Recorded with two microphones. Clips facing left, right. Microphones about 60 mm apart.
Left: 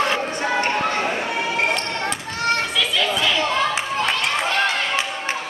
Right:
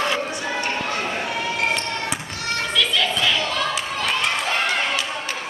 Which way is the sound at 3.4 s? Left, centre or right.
Left.